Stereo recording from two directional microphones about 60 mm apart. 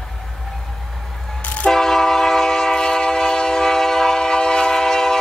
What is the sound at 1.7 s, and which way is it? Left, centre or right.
Train, centre.